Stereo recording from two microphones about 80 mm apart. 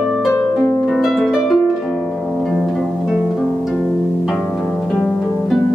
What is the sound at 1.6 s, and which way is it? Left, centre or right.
Harp, centre.